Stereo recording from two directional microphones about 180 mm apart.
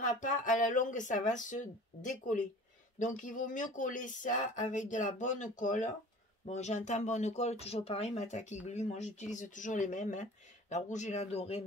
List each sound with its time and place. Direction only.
0.0 s speech: 45° left (ahead or behind)